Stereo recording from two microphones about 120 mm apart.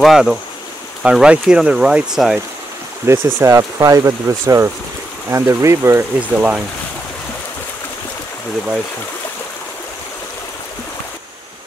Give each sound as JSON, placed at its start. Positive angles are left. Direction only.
{"t": 0.0, "sound": "speech", "side_deg": -5}
{"t": 3.1, "sound": "speech", "side_deg": -25}